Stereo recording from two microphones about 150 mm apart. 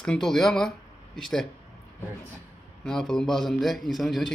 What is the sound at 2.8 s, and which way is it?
Speech, 5° left (ahead or behind).